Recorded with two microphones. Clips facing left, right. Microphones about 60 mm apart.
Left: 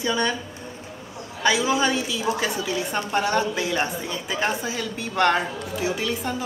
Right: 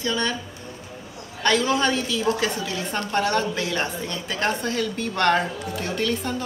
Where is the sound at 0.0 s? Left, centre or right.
Centre.